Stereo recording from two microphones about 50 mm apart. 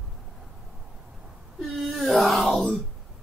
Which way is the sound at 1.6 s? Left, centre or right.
Centre.